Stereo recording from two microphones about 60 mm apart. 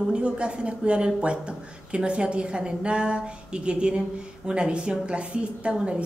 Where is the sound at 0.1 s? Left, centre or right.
Centre.